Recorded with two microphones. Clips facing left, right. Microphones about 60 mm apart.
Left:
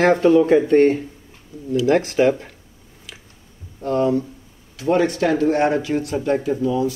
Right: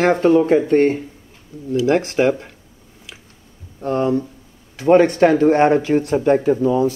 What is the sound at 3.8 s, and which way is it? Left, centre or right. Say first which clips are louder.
Speech: even; right.